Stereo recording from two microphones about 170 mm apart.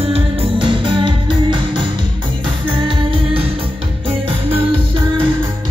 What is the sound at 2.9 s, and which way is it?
Music, 30° right (ahead or behind).